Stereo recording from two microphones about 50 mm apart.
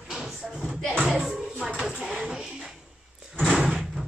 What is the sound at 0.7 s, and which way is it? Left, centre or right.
Speech, centre.